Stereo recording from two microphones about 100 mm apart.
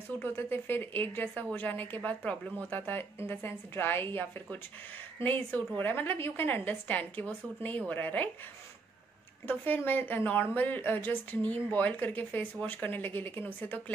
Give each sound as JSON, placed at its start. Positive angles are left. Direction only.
{"t": 0.2, "sound": "a woman's voice", "side_deg": 20}
{"t": 9.5, "sound": "speech", "side_deg": 20}